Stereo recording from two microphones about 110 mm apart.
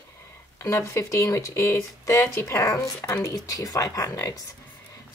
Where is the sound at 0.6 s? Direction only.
25° left (ahead or behind).